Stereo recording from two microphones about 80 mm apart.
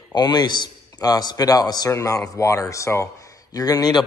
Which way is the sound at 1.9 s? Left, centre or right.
Left.